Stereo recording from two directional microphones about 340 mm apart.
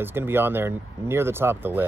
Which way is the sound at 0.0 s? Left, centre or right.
Centre.